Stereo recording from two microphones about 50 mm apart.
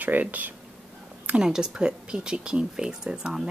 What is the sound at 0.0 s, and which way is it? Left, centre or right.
Speech, right.